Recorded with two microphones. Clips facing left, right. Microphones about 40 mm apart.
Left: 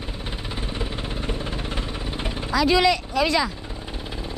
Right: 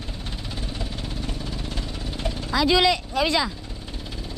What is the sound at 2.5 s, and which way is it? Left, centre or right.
Speech, left.